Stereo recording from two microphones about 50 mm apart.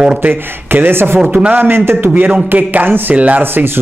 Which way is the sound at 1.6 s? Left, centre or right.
Right.